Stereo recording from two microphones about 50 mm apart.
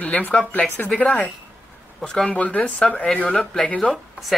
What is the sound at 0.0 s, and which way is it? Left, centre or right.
Speech, left.